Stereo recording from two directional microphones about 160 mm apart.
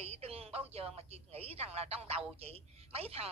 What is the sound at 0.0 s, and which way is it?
Speech, 40° right (ahead or behind).